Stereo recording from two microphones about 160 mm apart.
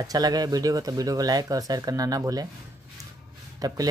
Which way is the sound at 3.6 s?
20° right (ahead or behind).